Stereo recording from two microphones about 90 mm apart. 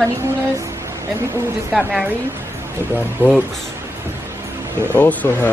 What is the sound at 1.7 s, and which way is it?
Speech, centre (ahead or behind).